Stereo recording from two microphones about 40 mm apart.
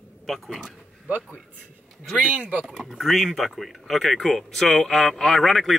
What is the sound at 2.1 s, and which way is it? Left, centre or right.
Speech, right.